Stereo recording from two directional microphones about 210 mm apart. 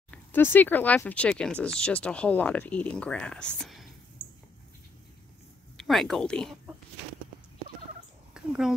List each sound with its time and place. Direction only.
0.1 s speech: 10° left (ahead or behind)
5.8 s speech: centre (ahead or behind)
8.4 s speech: centre (ahead or behind)